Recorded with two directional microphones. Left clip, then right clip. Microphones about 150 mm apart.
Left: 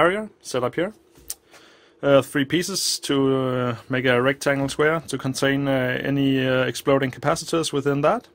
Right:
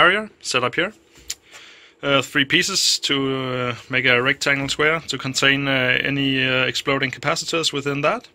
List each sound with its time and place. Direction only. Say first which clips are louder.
0.0 s speech: right 4 dB; 20° left (ahead or behind)
2.0 s speech: left 1 dB; 55° left (ahead or behind)
2.4 s speech: right 6 dB; 40° left (ahead or behind)